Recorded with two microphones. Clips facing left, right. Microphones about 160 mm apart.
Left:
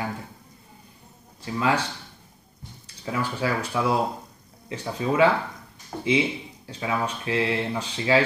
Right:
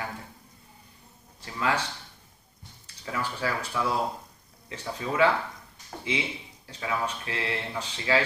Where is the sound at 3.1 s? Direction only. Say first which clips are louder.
Left 4 dB; 20° left (ahead or behind).